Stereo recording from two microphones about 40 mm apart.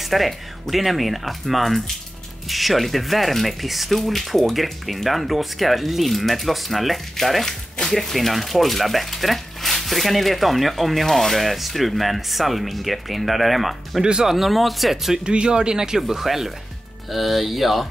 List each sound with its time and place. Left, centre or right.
0.0 s speech: centre
15.2 s speech: right
16.0 s speech: centre